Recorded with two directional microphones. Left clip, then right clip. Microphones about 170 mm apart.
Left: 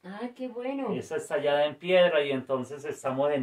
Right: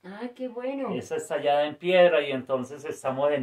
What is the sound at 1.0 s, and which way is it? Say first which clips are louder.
Speech: right 1 dB; 45° right (ahead or behind).